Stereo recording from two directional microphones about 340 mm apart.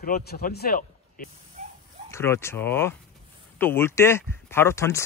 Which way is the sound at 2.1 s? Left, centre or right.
Centre.